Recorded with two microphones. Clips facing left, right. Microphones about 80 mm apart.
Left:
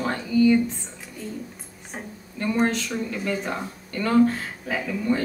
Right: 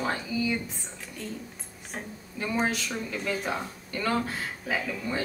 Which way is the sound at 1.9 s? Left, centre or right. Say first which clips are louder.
Left 2 dB; centre.